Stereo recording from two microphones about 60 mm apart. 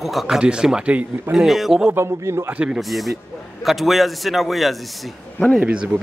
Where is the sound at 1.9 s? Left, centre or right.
Right.